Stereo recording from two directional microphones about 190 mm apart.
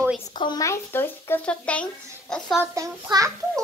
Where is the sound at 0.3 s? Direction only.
25° left (ahead or behind); by 2.6 s 5° left (ahead or behind).